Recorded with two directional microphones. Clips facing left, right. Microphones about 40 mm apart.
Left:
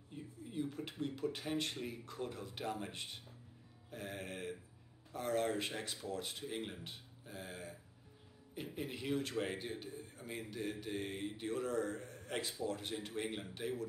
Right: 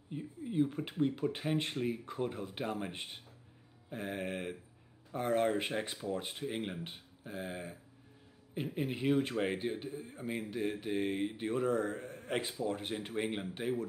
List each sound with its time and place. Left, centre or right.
0.1 s speech: right